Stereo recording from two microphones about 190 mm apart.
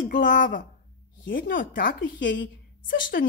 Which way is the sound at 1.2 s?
70° left (ahead or behind).